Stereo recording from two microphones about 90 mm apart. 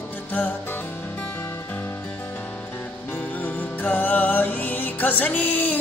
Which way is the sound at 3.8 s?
20° left (ahead or behind).